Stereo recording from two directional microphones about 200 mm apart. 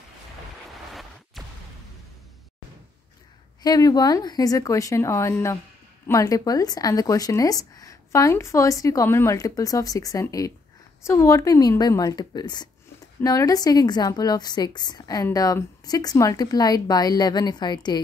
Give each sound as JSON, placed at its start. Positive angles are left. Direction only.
{"t": 3.6, "sound": "a woman's voice", "side_deg": 20}